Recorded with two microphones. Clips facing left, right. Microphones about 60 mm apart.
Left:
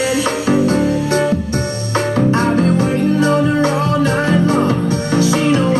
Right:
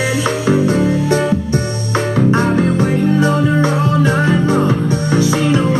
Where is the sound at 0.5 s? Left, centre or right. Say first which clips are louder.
Even; right.